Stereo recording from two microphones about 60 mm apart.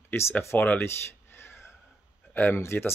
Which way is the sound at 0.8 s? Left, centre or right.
Left.